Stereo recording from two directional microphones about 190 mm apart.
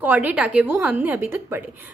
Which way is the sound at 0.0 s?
10° right (ahead or behind).